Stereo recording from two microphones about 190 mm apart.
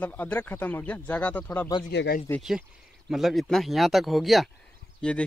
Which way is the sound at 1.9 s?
65° left (ahead or behind).